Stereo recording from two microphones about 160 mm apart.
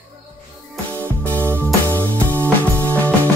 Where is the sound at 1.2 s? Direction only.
10° left (ahead or behind).